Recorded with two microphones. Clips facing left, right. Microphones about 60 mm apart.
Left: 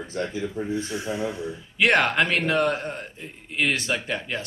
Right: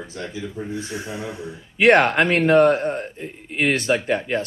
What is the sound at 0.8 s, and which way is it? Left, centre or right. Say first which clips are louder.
Speech: left 2 dB; right.